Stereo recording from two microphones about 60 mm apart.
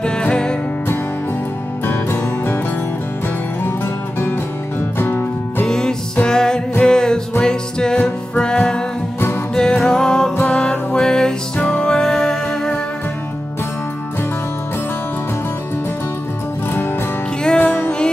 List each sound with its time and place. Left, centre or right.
0.0 s music: centre
1.9 s music: left
4.9 s music: left
5.7 s music: centre
17.6 s music: left